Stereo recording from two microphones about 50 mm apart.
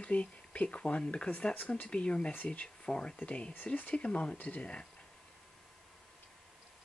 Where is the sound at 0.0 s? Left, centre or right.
Left.